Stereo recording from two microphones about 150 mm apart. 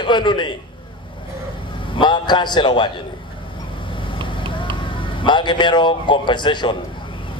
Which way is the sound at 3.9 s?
35° left (ahead or behind).